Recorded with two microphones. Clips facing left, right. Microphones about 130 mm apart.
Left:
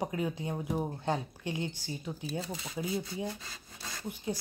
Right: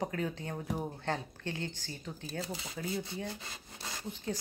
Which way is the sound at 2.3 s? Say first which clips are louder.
Right 2 dB; 25° left (ahead or behind).